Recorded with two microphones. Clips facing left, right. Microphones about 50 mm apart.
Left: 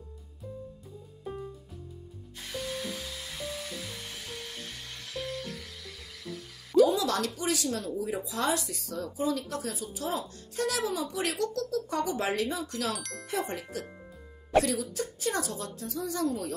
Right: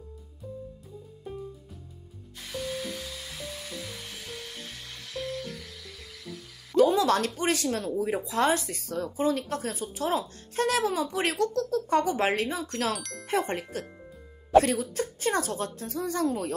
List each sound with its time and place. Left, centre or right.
2.3 s music: centre
6.8 s speech: right
12.9 s speech: centre
13.3 s speech: right